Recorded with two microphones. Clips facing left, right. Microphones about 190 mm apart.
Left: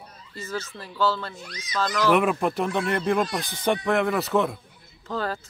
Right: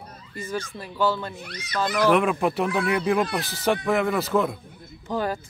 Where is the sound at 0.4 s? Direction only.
15° right (ahead or behind).